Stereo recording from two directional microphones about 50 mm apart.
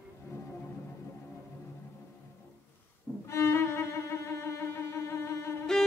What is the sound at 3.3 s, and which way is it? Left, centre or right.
Violin, left.